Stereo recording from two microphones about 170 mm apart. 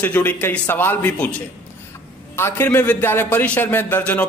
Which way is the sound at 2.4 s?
15° left (ahead or behind).